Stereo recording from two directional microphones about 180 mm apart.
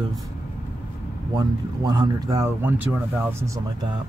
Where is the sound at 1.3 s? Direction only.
20° right (ahead or behind).